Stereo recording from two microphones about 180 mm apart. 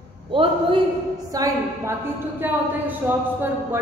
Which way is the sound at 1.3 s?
20° right (ahead or behind).